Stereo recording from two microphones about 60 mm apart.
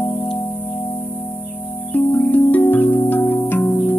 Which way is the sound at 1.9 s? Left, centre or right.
Left.